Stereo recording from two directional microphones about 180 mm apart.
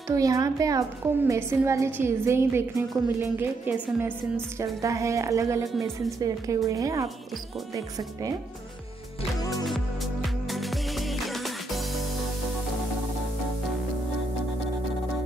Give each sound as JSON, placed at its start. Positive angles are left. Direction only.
{"t": 0.1, "sound": "a woman's voice", "side_deg": -20}
{"t": 10.2, "sound": "music", "side_deg": 0}